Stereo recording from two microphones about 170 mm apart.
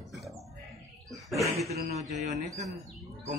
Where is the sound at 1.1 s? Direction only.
Centre (ahead or behind).